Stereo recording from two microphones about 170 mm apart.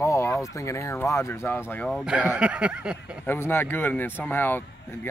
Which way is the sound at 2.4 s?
5° right (ahead or behind).